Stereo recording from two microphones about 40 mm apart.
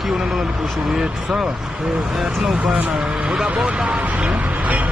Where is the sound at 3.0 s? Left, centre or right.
Centre.